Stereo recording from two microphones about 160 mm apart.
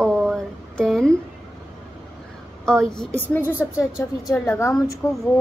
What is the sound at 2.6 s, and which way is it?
Speech, 5° left (ahead or behind).